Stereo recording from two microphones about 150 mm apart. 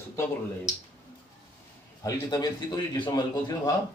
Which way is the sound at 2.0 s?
25° left (ahead or behind).